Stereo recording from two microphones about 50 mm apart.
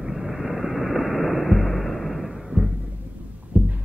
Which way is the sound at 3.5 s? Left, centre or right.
Right.